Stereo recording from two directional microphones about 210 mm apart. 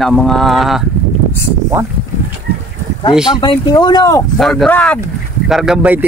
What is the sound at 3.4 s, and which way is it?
Speech, 20° left (ahead or behind).